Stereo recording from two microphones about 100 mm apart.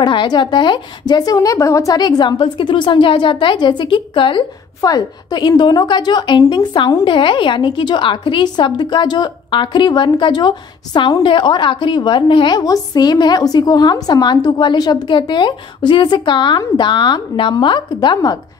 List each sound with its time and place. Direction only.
0.0 s a woman's voice: 55° left (ahead or behind)
11.2 s a woman's voice: 50° left (ahead or behind)
12.5 s a woman's voice: 40° left (ahead or behind)